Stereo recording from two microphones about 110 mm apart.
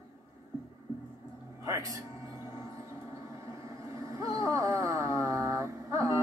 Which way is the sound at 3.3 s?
30° right (ahead or behind).